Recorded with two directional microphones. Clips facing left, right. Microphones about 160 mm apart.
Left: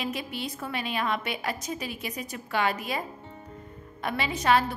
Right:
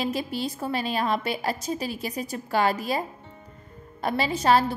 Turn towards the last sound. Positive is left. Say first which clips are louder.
# right 3 dB
turn(degrees=-35)  # may be behind; listen again after turning